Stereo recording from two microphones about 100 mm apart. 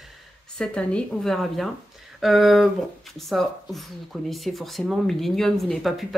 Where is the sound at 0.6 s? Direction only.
10° left (ahead or behind).